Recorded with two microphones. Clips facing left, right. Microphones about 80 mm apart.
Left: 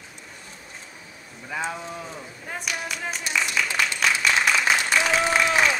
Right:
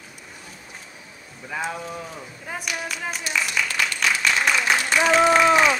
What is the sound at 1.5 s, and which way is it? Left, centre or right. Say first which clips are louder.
Speech: right 1 dB; centre.